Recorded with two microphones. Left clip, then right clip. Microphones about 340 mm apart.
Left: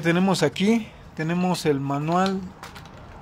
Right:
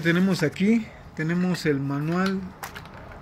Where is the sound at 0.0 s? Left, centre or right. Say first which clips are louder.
Left 2 dB; centre.